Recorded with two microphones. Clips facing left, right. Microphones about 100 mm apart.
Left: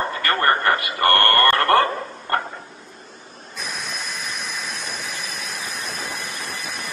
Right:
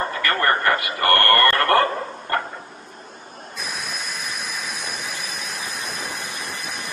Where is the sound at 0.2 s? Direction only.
30° left (ahead or behind).